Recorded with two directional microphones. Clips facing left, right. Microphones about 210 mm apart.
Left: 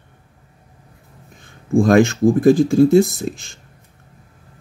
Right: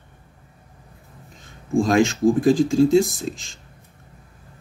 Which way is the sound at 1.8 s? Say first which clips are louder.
Left 4 dB; 55° left (ahead or behind).